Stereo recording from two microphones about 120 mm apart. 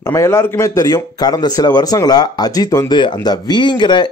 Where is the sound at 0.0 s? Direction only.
20° left (ahead or behind).